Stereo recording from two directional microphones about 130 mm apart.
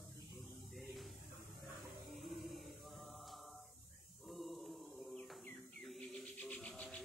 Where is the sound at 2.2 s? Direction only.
Centre (ahead or behind).